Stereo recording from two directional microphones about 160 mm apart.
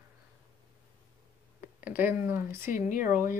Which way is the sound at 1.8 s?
10° right (ahead or behind).